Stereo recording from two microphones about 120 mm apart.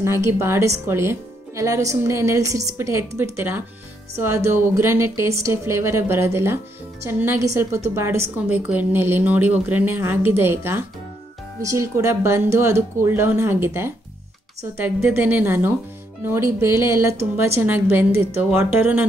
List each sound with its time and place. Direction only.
0.0 s a woman's voice: 20° right (ahead or behind)